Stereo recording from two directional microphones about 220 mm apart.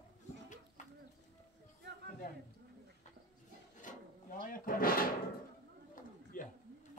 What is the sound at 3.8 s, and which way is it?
Drawer open or close, 40° left (ahead or behind).